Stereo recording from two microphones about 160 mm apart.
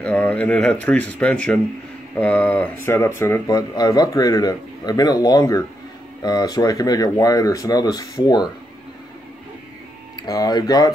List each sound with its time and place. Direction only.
0.0 s speech: 10° left (ahead or behind); by 8.5 s 25° left (ahead or behind)
10.1 s speech: 25° left (ahead or behind)